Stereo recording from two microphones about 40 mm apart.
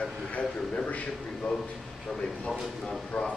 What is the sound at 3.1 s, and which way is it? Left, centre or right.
Speech, left.